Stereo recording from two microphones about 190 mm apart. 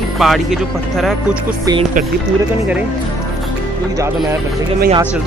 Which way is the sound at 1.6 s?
25° right (ahead or behind).